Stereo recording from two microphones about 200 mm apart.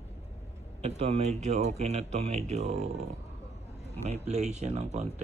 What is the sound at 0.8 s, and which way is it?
Speech, 35° right (ahead or behind).